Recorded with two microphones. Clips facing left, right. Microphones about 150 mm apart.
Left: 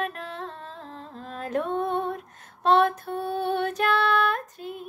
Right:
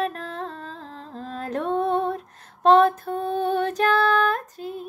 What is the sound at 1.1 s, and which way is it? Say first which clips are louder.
Music: even; 35° right (ahead or behind).